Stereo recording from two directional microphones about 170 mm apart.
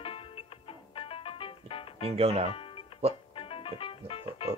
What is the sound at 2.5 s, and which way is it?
Music, 30° left (ahead or behind).